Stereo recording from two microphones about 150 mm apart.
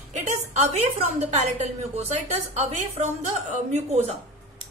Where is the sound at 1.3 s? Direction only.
45° right (ahead or behind).